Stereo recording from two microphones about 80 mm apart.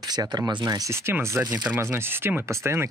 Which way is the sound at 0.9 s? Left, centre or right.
Right.